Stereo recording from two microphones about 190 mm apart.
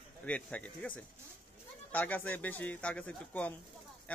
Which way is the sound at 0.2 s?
5° left (ahead or behind).